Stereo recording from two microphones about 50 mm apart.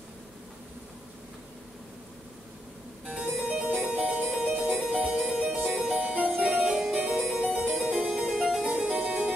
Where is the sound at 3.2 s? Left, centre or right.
Right.